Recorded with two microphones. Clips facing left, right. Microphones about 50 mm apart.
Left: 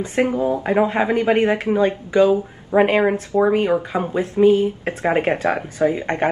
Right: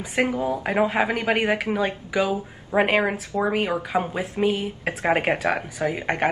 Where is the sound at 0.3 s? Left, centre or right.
Left.